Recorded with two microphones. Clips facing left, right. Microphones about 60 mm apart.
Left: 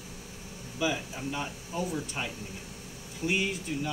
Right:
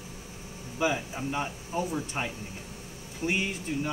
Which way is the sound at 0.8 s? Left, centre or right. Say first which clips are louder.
Right 2 dB; right.